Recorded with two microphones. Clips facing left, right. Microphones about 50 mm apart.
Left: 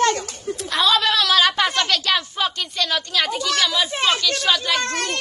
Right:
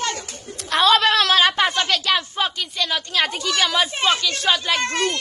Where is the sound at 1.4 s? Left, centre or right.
Right.